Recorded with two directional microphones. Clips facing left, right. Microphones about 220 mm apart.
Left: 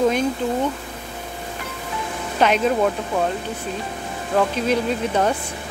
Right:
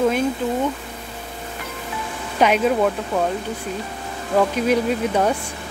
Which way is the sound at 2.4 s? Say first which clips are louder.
Right 1 dB; 5° right (ahead or behind).